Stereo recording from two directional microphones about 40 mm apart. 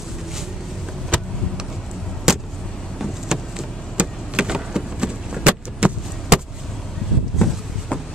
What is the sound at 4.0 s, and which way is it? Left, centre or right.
Vehicle, right.